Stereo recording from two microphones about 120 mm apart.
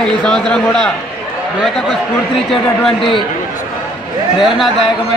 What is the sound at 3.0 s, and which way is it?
Speech, 45° left (ahead or behind).